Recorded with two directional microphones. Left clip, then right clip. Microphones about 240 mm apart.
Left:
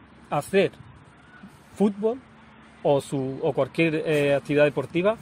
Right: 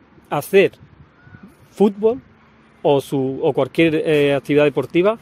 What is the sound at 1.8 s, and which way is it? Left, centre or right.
Speech, right.